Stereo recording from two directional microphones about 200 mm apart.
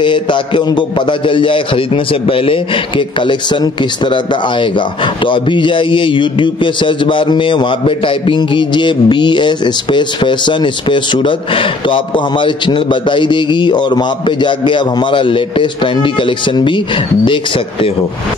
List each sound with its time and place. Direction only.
0.0 s speech: 25° left (ahead or behind)